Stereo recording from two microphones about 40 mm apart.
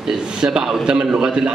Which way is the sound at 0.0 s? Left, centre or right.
Centre.